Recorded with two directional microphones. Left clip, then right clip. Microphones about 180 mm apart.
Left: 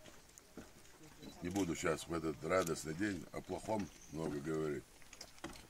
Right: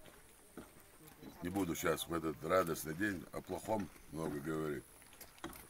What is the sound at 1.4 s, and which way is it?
Speech, 5° left (ahead or behind).